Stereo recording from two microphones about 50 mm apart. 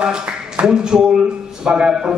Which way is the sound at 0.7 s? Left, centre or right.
Centre.